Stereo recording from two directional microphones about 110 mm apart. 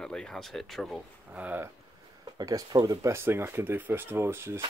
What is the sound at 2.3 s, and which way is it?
Speech, 35° right (ahead or behind).